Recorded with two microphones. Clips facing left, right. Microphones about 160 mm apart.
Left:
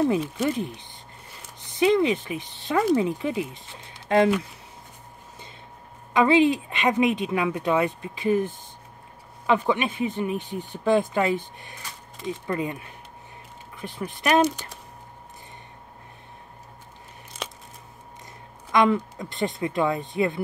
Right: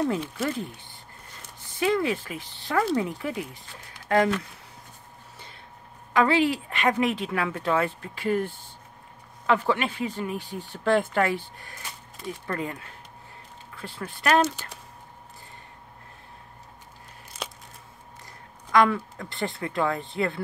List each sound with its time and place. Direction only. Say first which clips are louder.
0.5 s speech: left 4 dB; 15° left (ahead or behind)
6.1 s speech: left 3 dB; 20° left (ahead or behind)
18.7 s speech: left 1 dB; 20° left (ahead or behind)